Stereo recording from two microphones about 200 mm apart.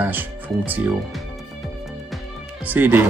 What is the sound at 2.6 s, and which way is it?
Speech, 10° right (ahead or behind).